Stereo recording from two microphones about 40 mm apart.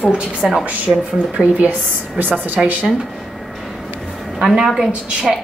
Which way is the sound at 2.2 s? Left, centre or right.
Right.